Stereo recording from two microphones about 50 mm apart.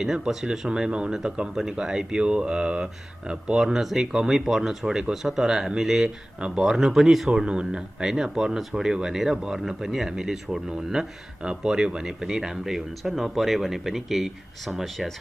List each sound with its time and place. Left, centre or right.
0.0 s speech: centre
0.7 s speech: centre
3.6 s speech: centre
6.4 s speech: centre
6.7 s speech: centre
7.3 s speech: centre